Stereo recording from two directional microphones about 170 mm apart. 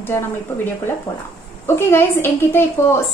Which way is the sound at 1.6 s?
15° left (ahead or behind).